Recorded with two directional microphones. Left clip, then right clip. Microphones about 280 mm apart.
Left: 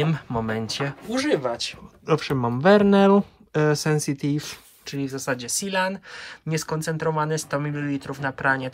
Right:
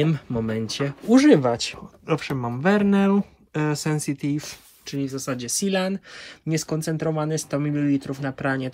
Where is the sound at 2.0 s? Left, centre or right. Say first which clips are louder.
Left 3 dB; centre.